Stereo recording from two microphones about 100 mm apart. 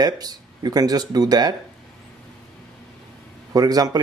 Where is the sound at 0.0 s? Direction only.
40° right (ahead or behind).